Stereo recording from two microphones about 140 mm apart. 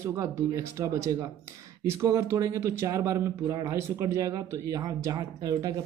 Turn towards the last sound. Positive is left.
turn(degrees=-25)  # may be behind; listen again after turning